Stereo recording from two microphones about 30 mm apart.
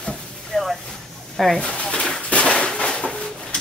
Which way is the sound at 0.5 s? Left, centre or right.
Centre.